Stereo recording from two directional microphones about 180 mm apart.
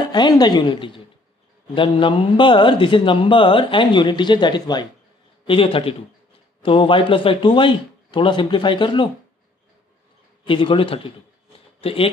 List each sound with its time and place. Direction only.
0.0 s a man's voice: 25° left (ahead or behind)
10.4 s speech: 30° left (ahead or behind)